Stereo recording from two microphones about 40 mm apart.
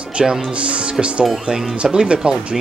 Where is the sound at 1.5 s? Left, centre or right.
Centre.